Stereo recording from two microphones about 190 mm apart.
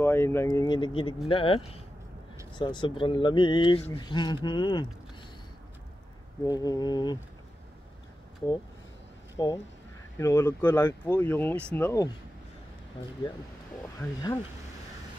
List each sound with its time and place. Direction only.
0.0 s speech: 10° left (ahead or behind)
6.4 s speech: 20° left (ahead or behind)
9.4 s speech: 20° left (ahead or behind)